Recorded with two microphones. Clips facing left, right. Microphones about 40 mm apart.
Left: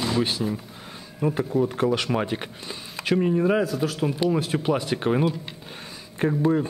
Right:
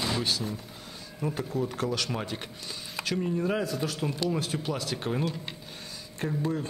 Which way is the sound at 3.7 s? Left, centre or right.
Centre.